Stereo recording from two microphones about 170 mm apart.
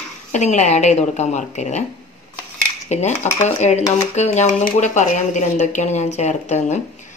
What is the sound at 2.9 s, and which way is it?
Cutlery, 40° left (ahead or behind).